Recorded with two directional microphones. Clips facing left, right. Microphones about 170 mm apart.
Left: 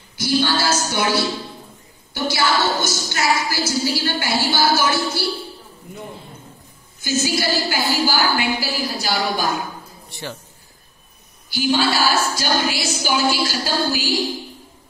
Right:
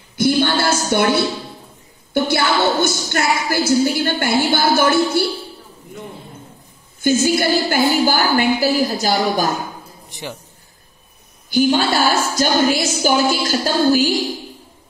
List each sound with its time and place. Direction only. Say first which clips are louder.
0.1 s a sound: right 4 dB; 55° right (ahead or behind)
2.1 s a woman's voice: right 3 dB; 60° right (ahead or behind)
7.0 s a woman's voice: right 6 dB; 55° right (ahead or behind)
10.0 s a man's voice: right 1 dB; 15° right (ahead or behind)
11.5 s a woman's voice: right 4 dB; 50° right (ahead or behind)